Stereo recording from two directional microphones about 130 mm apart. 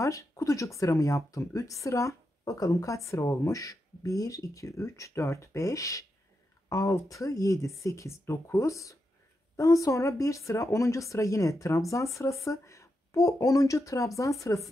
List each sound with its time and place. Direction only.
0.0 s a woman's voice: 25° left (ahead or behind)